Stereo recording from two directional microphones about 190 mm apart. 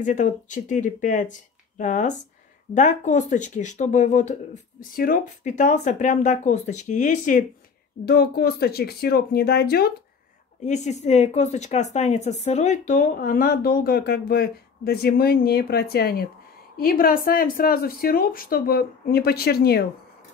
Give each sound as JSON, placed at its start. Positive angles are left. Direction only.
{"t": 0.0, "sound": "speech", "side_deg": 40}
{"t": 8.0, "sound": "speech", "side_deg": 55}
{"t": 10.6, "sound": "speech", "side_deg": 35}